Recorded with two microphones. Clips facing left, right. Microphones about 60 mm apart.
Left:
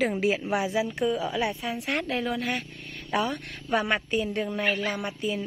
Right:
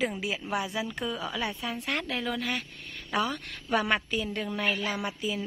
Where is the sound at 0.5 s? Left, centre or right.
Centre.